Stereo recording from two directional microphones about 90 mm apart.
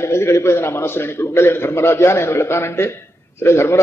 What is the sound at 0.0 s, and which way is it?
A man's voice, 30° left (ahead or behind).